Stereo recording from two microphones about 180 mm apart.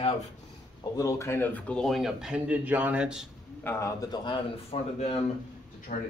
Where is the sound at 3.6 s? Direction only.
15° left (ahead or behind).